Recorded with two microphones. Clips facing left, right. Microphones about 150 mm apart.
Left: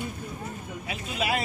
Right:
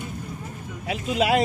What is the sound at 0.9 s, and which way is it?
Speech, 85° right.